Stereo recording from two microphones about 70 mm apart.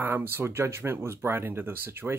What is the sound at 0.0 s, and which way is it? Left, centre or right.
Speech, right.